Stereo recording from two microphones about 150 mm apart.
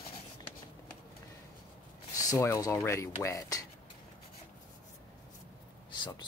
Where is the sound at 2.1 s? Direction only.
20° left (ahead or behind).